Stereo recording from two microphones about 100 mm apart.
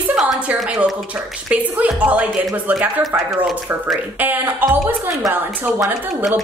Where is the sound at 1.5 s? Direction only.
15° right (ahead or behind).